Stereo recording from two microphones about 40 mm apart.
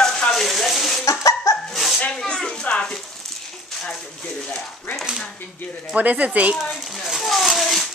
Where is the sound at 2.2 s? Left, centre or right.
Centre.